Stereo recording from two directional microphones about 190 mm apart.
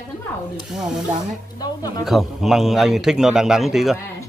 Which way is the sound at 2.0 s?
Centre (ahead or behind).